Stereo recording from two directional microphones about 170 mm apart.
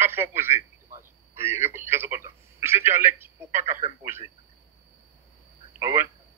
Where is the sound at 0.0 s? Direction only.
15° right (ahead or behind).